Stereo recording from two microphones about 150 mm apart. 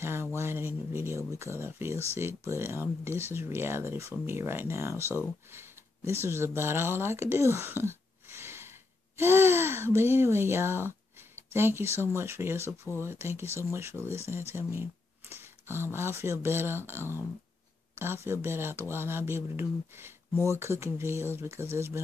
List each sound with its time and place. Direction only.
0.0 s speech: 15° right (ahead or behind)